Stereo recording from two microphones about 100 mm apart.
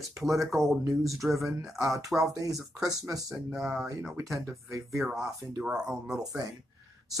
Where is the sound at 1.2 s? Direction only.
10° right (ahead or behind).